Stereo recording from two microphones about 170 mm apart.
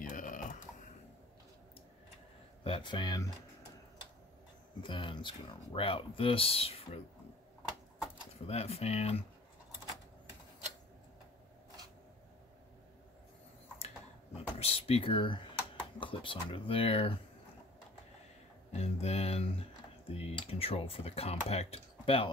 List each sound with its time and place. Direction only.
0.0 s a sound: 50° left (ahead or behind)
2.6 s speech: 30° left (ahead or behind)
4.8 s speech: 30° left (ahead or behind)
8.5 s speech: 35° left (ahead or behind)
13.7 s computer keyboard: 35° left (ahead or behind)
16.0 s speech: 30° left (ahead or behind)
18.7 s speech: 40° left (ahead or behind)